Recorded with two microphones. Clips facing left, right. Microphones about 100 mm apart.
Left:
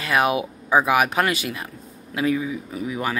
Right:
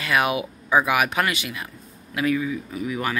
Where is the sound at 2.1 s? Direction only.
25° left (ahead or behind).